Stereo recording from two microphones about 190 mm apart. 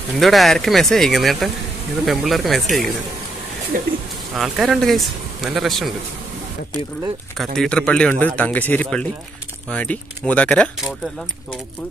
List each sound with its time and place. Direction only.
0.2 s a man's voice: centre (ahead or behind)
3.7 s speech: 50° right (ahead or behind)
4.4 s a man's voice: centre (ahead or behind)
7.3 s a man's voice: centre (ahead or behind)